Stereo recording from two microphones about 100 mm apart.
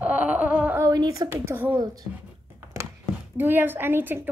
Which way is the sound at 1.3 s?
20° right (ahead or behind).